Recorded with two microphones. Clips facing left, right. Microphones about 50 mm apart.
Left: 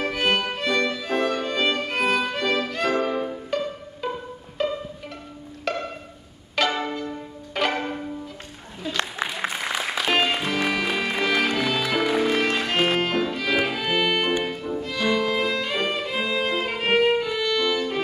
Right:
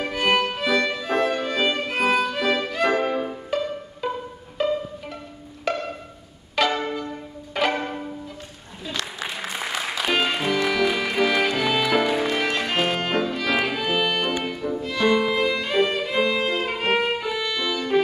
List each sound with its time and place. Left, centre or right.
0.0 s music: centre
2.9 s music: right
3.3 s music: centre
5.7 s violin: centre
6.5 s pizzicato: centre
8.9 s applause: left
9.9 s music: centre
11.6 s music: centre
12.3 s music: centre
15.4 s violin: centre